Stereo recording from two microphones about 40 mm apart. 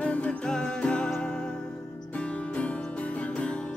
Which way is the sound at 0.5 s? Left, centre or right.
Left.